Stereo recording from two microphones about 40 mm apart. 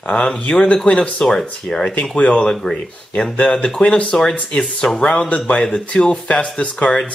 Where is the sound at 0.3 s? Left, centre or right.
Centre.